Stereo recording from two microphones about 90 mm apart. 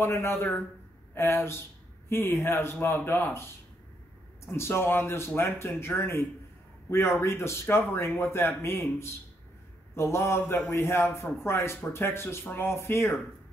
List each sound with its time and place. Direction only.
0.0 s speech: 30° left (ahead or behind)
4.5 s speech: 30° left (ahead or behind)